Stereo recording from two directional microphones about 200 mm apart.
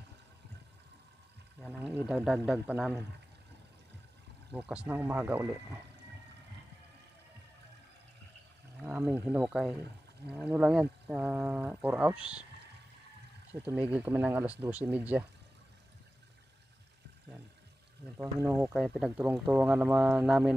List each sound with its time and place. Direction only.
1.7 s speech: 5° right (ahead or behind)
4.5 s speech: 5° right (ahead or behind)
8.8 s speech: 10° right (ahead or behind)
13.5 s speech: 10° right (ahead or behind)
18.1 s speech: 10° right (ahead or behind)